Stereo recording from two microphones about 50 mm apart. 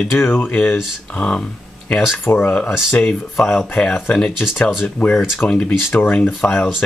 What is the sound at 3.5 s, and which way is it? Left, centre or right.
Speech, centre.